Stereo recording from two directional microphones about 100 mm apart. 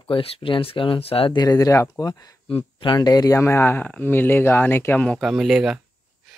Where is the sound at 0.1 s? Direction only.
60° left (ahead or behind).